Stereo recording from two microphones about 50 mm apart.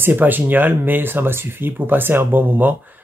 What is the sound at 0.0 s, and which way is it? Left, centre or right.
Speech, right.